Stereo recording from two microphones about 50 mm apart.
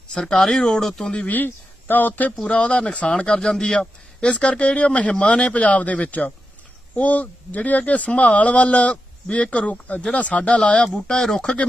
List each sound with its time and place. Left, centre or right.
0.1 s speech: centre
1.1 s speech: left
2.4 s speech: left; by 11.5 s centre